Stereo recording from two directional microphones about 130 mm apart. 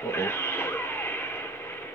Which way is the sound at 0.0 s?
20° left (ahead or behind).